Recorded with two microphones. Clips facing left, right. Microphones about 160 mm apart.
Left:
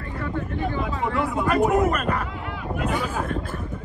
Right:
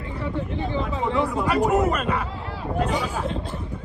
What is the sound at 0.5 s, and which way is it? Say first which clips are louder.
Vehicle: left 1 dB; 50° left (ahead or behind).